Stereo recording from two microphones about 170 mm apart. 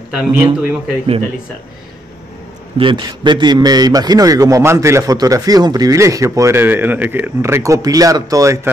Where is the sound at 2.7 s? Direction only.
30° right (ahead or behind).